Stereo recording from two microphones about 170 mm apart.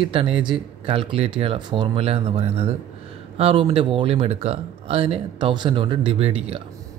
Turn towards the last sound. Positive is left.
turn(degrees=-35)  # may be behind; listen again after turning